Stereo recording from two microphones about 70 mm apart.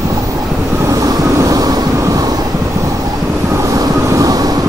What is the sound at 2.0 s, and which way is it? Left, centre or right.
Vehicle, right.